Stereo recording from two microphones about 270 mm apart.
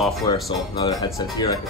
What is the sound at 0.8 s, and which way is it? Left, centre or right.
Speech, centre.